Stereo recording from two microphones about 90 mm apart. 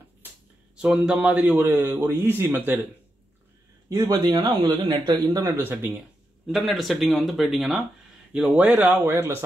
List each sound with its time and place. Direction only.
0.7 s speech: 10° right (ahead or behind)
1.6 s speech: 25° right (ahead or behind)
4.1 s speech: 50° right (ahead or behind)
5.5 s speech: 25° right (ahead or behind)
6.4 s speech: centre (ahead or behind); by 9.4 s 25° right (ahead or behind)